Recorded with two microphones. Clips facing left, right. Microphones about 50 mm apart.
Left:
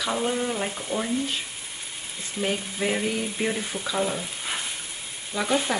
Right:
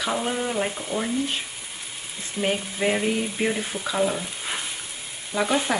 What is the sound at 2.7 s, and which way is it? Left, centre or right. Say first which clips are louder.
Speech: right 4 dB; centre.